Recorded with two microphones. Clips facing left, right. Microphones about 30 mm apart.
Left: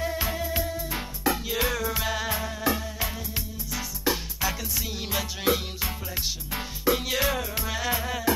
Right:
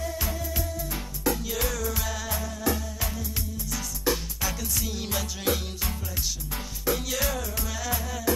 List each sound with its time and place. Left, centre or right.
0.0 s music: left
3.7 s music: centre; by 8.2 s left